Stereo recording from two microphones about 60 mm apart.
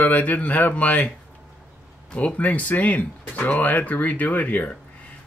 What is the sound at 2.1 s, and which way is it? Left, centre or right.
Speech, centre.